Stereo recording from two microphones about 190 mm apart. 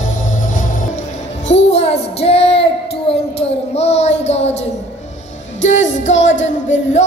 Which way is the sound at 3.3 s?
35° left (ahead or behind).